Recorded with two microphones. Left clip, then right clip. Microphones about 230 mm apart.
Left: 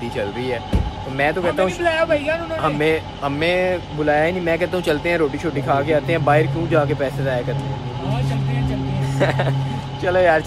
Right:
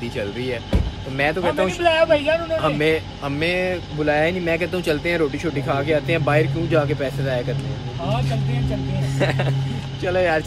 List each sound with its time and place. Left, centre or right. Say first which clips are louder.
1.1 s speech: left 1 dB; centre
9.2 s speech: left 3 dB; centre